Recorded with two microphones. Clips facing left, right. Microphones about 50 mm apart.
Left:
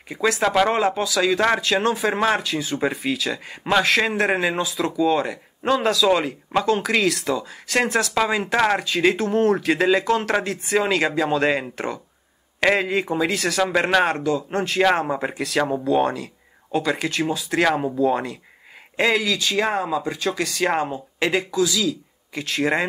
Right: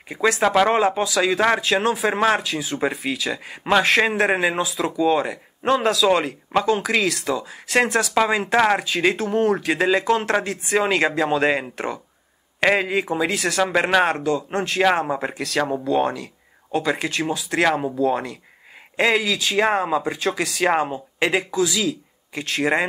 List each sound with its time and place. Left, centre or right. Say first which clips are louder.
0.1 s speech: right 2 dB; centre
3.7 s speech: right 2 dB; centre
19.7 s speech: right 2 dB; right; by 22.8 s centre